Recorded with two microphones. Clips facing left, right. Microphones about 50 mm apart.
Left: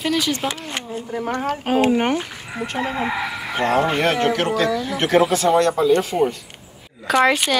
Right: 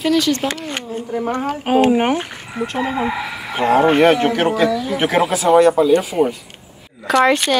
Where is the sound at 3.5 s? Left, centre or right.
Centre.